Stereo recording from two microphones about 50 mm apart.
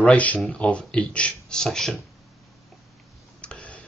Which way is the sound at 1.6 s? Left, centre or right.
Centre.